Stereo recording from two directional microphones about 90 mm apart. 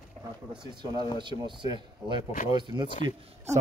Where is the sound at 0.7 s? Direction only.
55° right (ahead or behind).